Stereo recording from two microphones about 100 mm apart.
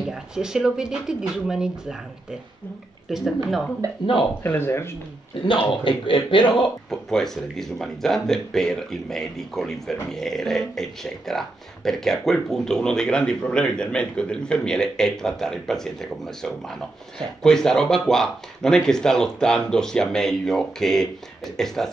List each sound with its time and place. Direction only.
0.1 s speech: 5° right (ahead or behind)
3.1 s speech: 5° right (ahead or behind)
4.0 s a man's voice: 55° left (ahead or behind)
4.4 s speech: 20° left (ahead or behind)
5.4 s a man's voice: 55° left (ahead or behind)
6.9 s speech: 5° left (ahead or behind)